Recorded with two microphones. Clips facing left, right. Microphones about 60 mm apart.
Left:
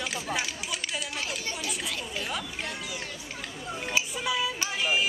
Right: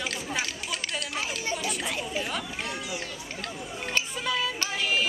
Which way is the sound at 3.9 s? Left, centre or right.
Centre.